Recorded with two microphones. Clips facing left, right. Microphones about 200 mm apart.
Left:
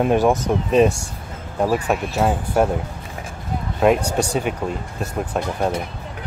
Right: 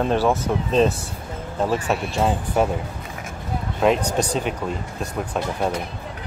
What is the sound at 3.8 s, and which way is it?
Speech, 5° left (ahead or behind).